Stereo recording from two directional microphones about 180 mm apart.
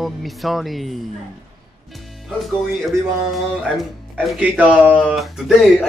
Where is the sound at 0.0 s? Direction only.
Centre (ahead or behind).